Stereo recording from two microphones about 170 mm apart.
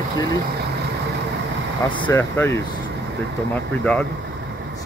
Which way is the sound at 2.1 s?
10° left (ahead or behind).